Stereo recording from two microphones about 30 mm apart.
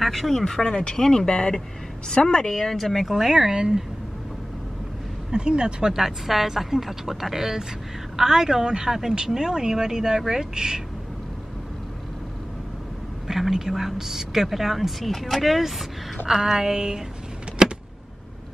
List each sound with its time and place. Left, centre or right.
0.0 s speech: centre
0.7 s speech: left
0.9 s speech: left
2.5 s speech: centre
3.3 s speech: centre
5.3 s speech: right
5.9 s a woman's voice: centre
13.3 s a woman's voice: centre
16.3 s speech: centre
17.6 s vehicle: right